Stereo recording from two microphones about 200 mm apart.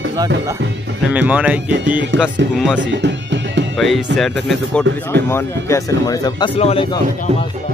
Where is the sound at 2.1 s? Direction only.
65° right (ahead or behind).